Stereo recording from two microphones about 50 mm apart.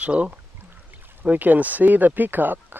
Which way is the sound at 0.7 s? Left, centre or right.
Right.